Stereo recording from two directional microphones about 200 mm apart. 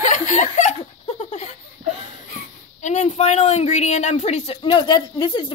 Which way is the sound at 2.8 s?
35° left (ahead or behind).